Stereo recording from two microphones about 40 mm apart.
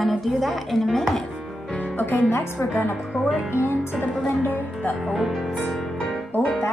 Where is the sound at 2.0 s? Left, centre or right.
Left.